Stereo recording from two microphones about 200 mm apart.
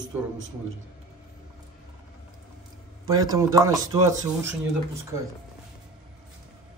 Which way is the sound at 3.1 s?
20° right (ahead or behind).